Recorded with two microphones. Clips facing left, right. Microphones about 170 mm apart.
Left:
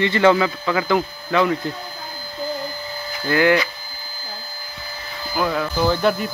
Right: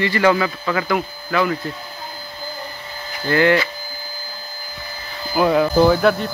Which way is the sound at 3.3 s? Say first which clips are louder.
Right 1 dB; 10° left (ahead or behind).